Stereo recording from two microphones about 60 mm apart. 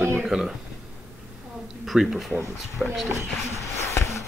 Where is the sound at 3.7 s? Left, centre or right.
Left.